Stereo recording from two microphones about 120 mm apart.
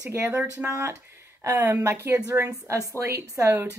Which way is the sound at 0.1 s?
20° right (ahead or behind).